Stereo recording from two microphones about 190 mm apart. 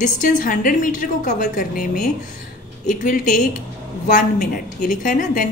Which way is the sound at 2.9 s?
45° left (ahead or behind).